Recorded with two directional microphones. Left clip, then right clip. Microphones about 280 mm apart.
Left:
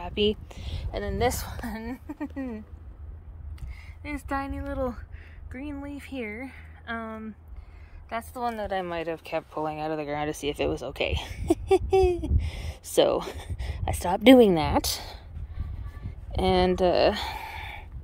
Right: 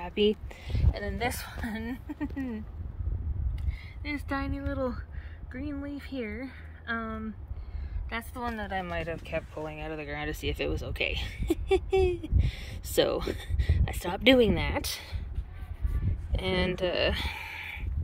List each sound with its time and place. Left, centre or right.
0.0 s speech: centre
4.0 s speech: centre
16.3 s speech: left